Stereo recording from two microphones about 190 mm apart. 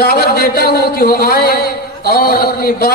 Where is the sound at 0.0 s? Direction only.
60° left (ahead or behind).